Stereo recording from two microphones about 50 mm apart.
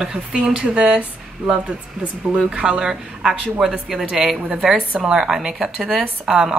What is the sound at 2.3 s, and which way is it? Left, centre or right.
Speech, right.